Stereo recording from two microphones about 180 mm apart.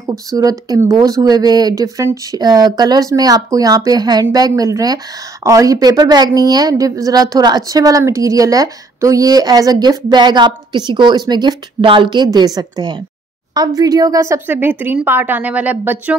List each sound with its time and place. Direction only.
0.0 s a woman's voice: 20° right (ahead or behind)